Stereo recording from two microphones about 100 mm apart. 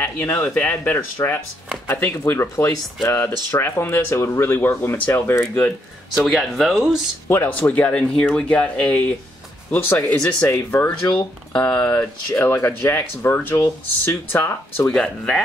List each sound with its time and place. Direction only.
0.0 s speech: 20° left (ahead or behind)
6.2 s speech: centre (ahead or behind)
7.2 s speech: 20° left (ahead or behind)
12.0 s speech: 25° left (ahead or behind)
14.9 s speech: 10° left (ahead or behind)